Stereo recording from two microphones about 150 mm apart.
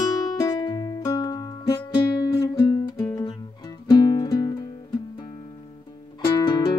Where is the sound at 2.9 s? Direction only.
20° left (ahead or behind).